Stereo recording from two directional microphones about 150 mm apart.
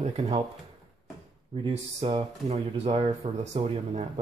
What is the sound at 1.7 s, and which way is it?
Speech, 45° right (ahead or behind).